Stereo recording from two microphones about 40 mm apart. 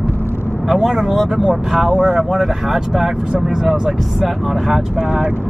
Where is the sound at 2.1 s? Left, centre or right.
Centre.